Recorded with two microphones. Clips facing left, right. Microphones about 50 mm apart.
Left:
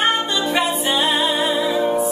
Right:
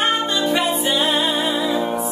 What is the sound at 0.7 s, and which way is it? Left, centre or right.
Music, centre.